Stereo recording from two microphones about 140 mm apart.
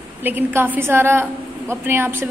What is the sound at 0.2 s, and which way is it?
A woman's voice, 15° right (ahead or behind).